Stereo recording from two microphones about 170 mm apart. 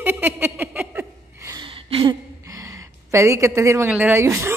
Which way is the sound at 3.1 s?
15° right (ahead or behind).